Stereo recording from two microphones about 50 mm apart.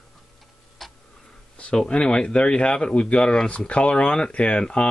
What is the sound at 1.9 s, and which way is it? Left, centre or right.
Speech, left.